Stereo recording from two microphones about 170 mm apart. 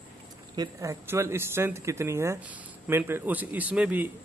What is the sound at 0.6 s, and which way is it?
A man's voice, 20° right (ahead or behind).